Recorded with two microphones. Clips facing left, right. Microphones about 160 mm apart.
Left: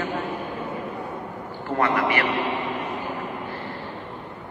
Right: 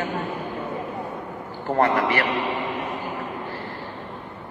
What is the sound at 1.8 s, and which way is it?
Speech, 35° right (ahead or behind).